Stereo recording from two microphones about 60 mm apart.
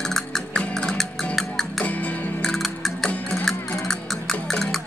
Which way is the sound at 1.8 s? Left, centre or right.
Left.